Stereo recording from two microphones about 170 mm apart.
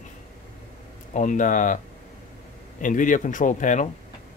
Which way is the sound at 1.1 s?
50° left (ahead or behind).